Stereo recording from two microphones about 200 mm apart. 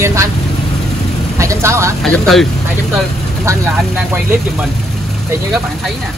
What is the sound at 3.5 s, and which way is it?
Speech, 10° right (ahead or behind).